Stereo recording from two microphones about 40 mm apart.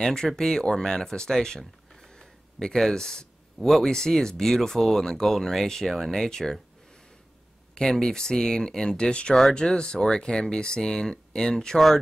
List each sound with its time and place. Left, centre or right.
0.0 s speech: centre
2.0 s a sound: centre
3.6 s speech: centre
7.7 s speech: centre